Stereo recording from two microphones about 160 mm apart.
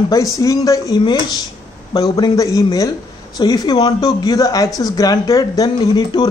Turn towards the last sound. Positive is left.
turn(degrees=25)  # may be behind; listen again after turning